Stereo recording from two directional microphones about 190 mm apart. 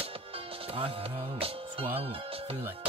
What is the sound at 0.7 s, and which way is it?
Music, 30° right (ahead or behind).